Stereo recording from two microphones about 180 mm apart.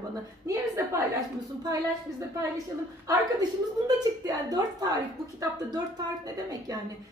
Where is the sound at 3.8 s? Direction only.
20° right (ahead or behind).